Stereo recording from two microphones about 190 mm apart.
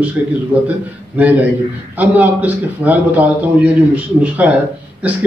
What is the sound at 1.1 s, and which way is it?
A man's voice, 10° right (ahead or behind).